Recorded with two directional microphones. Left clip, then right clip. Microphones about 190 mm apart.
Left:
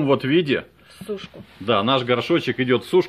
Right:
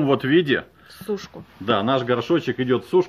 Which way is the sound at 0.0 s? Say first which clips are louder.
Even; 5° left (ahead or behind).